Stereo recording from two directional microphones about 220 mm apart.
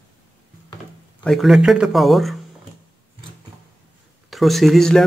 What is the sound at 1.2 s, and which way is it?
Speech, centre (ahead or behind).